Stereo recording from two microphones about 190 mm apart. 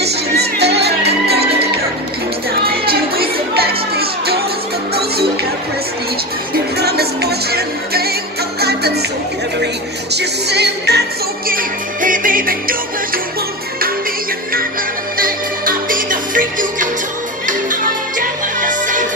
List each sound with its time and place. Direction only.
0.0 s music: 60° right (ahead or behind)
2.8 s music: 55° right (ahead or behind)
6.5 s music: 55° right (ahead or behind)
10.1 s music: 60° right (ahead or behind)
15.1 s music: 50° right (ahead or behind)